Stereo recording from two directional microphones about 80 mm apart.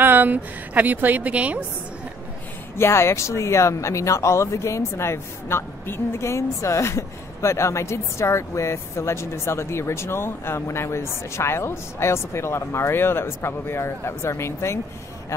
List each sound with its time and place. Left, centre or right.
0.0 s a woman's voice: right
2.8 s speech: left